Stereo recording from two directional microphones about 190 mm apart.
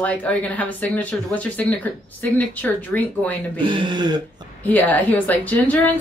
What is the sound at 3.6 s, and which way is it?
Speech, 25° right (ahead or behind).